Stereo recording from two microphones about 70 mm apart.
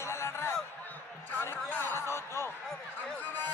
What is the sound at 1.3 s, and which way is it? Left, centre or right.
Speech, left.